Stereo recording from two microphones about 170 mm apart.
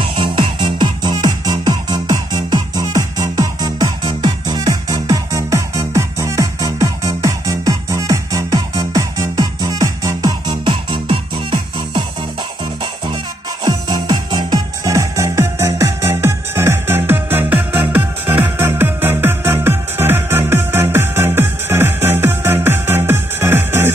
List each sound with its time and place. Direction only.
0.0 s music: 30° right (ahead or behind)
13.7 s music: 25° right (ahead or behind)